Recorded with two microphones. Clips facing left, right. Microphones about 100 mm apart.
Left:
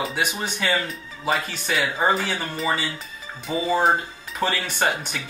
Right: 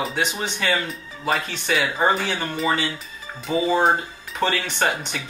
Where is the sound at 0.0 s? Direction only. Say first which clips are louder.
Right 1 dB; 5° left (ahead or behind).